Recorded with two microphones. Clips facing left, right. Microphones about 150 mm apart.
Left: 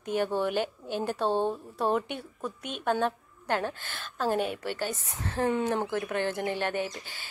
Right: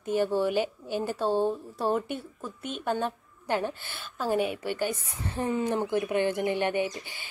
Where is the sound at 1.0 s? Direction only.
5° right (ahead or behind).